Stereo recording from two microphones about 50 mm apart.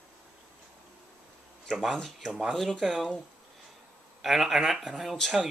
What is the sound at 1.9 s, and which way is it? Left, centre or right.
Speech, centre.